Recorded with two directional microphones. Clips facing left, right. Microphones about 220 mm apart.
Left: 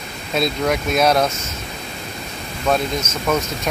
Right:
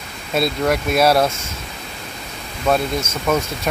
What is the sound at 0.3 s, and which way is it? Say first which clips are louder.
Speech: right 1 dB; 5° right (ahead or behind).